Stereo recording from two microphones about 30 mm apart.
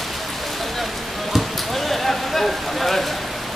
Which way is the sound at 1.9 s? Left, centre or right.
Centre.